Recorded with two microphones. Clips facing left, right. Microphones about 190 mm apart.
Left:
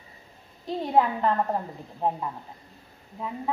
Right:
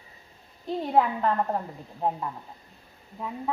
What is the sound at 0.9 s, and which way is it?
A woman's voice, 5° left (ahead or behind).